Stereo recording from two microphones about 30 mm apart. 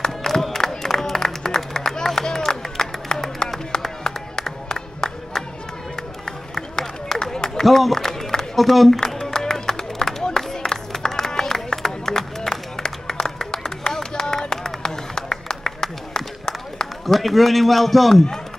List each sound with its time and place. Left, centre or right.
0.0 s music: centre
6.2 s run: centre
7.9 s a sound: centre
8.5 s a man's voice: centre
9.0 s music: centre
11.1 s a sound: centre
17.0 s a man's voice: centre